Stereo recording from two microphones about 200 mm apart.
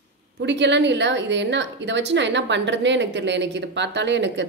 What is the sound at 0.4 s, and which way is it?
A woman's voice, 60° right (ahead or behind).